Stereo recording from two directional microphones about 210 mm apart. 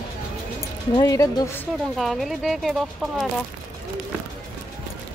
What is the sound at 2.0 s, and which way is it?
Speech, centre (ahead or behind).